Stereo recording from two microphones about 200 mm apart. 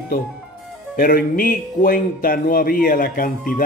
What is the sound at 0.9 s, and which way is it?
Speech, 45° left (ahead or behind).